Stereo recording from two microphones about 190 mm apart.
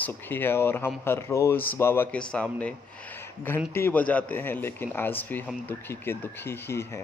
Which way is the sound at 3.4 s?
10° left (ahead or behind).